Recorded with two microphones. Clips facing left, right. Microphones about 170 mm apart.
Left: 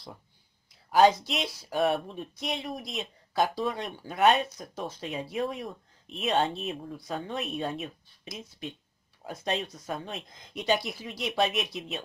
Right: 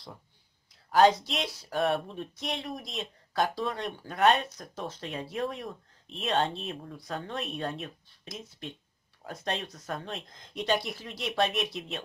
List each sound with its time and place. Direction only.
0.9 s speech: 5° left (ahead or behind)